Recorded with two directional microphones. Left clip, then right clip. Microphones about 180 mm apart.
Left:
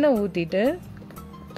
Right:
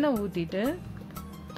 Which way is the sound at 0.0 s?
40° left (ahead or behind).